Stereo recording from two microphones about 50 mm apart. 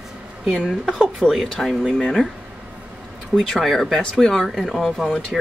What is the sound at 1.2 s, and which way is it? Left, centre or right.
Speech, centre.